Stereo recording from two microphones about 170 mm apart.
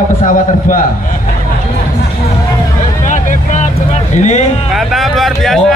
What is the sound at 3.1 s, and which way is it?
Vehicle, 45° left (ahead or behind).